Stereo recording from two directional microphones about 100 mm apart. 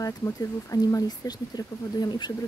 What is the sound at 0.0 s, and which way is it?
Speech, 35° left (ahead or behind).